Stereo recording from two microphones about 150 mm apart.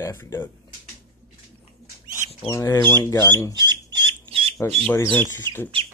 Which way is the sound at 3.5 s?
30° right (ahead or behind).